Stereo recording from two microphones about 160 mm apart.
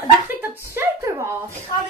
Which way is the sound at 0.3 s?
15° right (ahead or behind).